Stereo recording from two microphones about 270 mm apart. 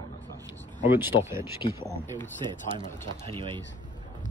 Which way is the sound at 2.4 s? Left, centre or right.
Centre.